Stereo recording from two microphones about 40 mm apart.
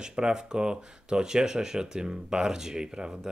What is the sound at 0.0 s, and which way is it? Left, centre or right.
Speech, right.